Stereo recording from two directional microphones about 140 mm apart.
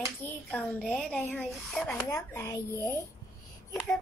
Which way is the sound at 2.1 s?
20° left (ahead or behind).